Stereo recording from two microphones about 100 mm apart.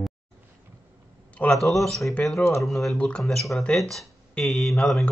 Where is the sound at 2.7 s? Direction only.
Centre (ahead or behind).